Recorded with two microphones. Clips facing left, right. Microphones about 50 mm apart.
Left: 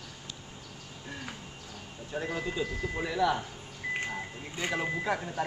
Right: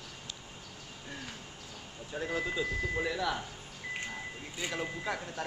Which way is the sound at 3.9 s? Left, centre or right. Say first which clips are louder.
Left 4 dB; left.